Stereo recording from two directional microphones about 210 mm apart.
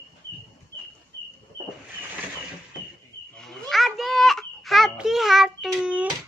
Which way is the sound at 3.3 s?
Centre (ahead or behind).